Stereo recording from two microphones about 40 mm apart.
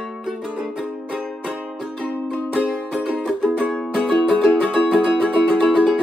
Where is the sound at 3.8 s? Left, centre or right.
Left.